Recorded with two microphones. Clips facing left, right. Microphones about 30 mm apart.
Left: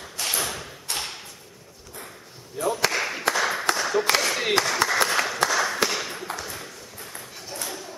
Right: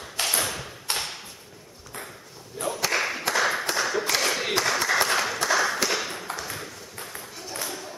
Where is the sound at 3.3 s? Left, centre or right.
Centre.